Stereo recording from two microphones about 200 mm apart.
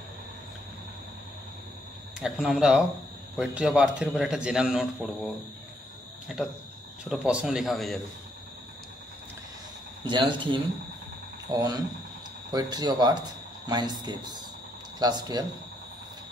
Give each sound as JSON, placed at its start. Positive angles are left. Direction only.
{"t": 2.1, "sound": "a man's voice", "side_deg": -5}
{"t": 6.2, "sound": "cricket", "side_deg": 0}
{"t": 7.1, "sound": "a man's voice", "side_deg": -5}
{"t": 10.0, "sound": "speech", "side_deg": -25}